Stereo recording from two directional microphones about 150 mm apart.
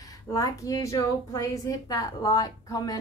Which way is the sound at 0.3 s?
25° left (ahead or behind).